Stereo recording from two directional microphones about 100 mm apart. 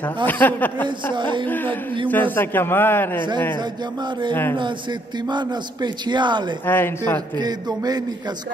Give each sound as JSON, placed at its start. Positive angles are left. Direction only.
{"t": 0.3, "sound": "speech", "side_deg": 15}
{"t": 0.8, "sound": "a man's voice", "side_deg": -55}
{"t": 2.0, "sound": "a man's voice", "side_deg": 15}
{"t": 3.2, "sound": "a man's voice", "side_deg": -50}
{"t": 5.3, "sound": "a man's voice", "side_deg": -50}
{"t": 6.6, "sound": "a man's voice", "side_deg": 20}
{"t": 7.3, "sound": "a man's voice", "side_deg": -40}